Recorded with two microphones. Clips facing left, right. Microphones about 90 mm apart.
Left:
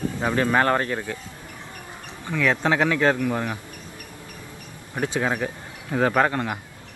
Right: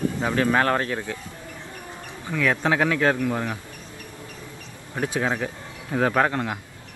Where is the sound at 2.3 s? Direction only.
20° left (ahead or behind).